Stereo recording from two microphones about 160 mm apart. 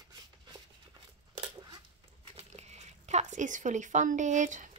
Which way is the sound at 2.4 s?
45° right (ahead or behind).